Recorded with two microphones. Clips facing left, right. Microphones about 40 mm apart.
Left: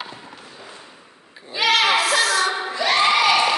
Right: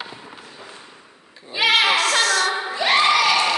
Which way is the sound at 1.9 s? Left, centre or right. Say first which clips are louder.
Even; centre.